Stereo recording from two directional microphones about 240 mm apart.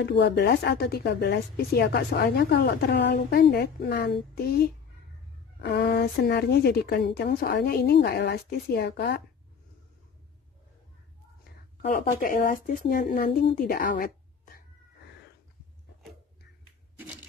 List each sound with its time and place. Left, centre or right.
0.0 s a woman's voice: left
11.8 s speech: left